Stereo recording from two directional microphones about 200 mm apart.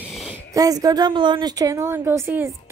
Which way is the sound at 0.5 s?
20° right (ahead or behind).